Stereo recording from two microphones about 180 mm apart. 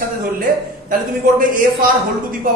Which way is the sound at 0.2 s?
50° right (ahead or behind).